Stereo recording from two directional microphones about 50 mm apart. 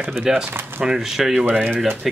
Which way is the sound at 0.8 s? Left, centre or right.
Centre.